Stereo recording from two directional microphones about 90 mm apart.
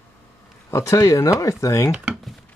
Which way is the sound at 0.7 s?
35° left (ahead or behind).